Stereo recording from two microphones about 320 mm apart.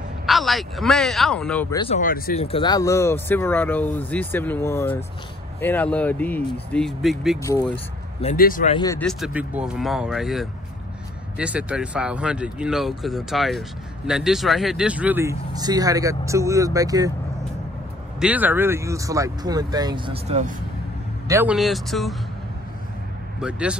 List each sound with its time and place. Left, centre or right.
0.3 s speech: centre
7.4 s speech: centre
9.0 s speech: centre
18.2 s speech: centre; by 20.5 s right
21.3 s speech: centre
23.4 s speech: centre